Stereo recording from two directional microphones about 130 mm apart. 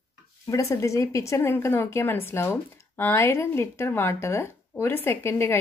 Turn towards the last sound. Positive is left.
turn(degrees=20)  # may be behind; listen again after turning